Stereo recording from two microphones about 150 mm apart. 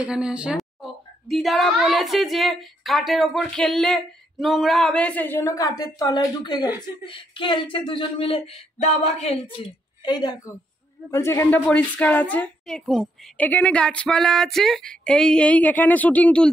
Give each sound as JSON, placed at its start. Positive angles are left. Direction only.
{"t": 0.0, "sound": "a woman's voice", "side_deg": -5}
{"t": 8.5, "sound": "a sound", "side_deg": 50}
{"t": 10.0, "sound": "a woman's voice", "side_deg": 30}
{"t": 11.1, "sound": "a woman's voice", "side_deg": 15}